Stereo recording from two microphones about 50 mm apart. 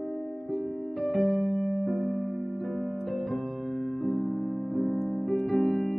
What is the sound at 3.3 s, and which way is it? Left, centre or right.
Music, centre.